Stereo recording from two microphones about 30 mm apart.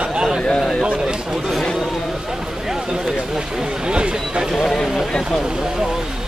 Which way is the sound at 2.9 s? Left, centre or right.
Right.